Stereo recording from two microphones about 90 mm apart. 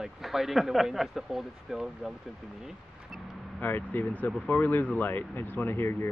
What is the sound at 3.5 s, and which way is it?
Speech, 20° left (ahead or behind).